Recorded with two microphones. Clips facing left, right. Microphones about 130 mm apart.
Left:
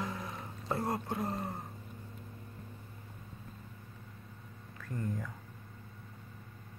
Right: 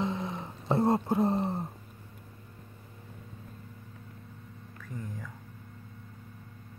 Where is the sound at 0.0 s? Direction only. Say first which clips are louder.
Right 7 dB; 25° right (ahead or behind).